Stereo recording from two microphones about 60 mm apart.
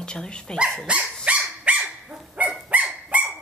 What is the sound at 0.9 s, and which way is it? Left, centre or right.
Dog, centre.